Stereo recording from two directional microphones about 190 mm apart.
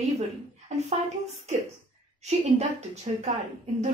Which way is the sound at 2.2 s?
35° right (ahead or behind).